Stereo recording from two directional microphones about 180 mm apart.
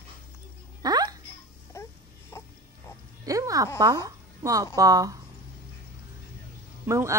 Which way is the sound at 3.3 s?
20° right (ahead or behind).